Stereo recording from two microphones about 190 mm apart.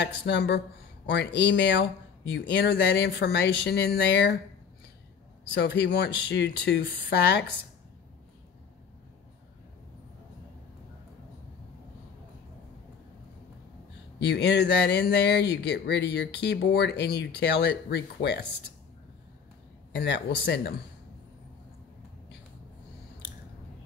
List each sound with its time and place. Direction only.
0.0 s speech: 65° left (ahead or behind)
5.5 s speech: 65° left (ahead or behind)
14.2 s speech: 65° left (ahead or behind)
19.9 s speech: 65° left (ahead or behind)